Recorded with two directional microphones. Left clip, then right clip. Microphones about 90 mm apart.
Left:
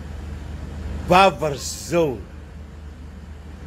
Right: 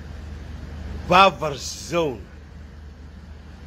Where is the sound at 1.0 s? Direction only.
20° left (ahead or behind).